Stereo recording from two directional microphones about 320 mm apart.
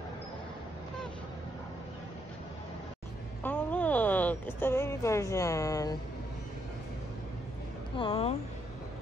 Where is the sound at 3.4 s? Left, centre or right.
Centre.